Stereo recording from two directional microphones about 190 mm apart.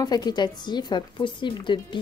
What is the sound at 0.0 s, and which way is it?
Speech, 20° left (ahead or behind).